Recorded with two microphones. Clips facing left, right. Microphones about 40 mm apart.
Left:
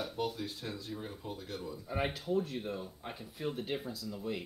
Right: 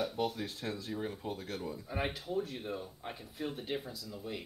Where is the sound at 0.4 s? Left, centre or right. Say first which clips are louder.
Right 2 dB; centre.